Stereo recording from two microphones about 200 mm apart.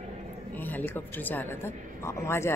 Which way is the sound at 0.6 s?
10° left (ahead or behind).